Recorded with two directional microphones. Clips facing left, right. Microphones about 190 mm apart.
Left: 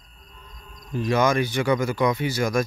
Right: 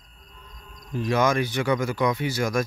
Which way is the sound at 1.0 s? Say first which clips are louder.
Left 1 dB; 5° right (ahead or behind).